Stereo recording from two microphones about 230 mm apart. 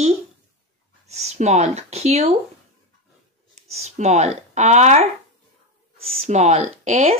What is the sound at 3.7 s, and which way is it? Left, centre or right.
Speech, right.